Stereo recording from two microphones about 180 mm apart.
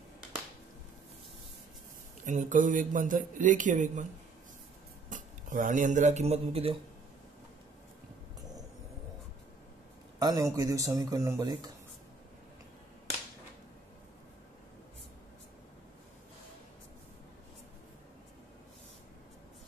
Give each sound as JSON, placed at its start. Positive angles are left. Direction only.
{"t": 2.2, "sound": "speech", "side_deg": -45}
{"t": 5.1, "sound": "speech", "side_deg": -45}
{"t": 10.1, "sound": "speech", "side_deg": -20}